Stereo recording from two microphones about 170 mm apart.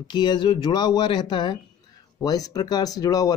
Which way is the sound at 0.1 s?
25° left (ahead or behind).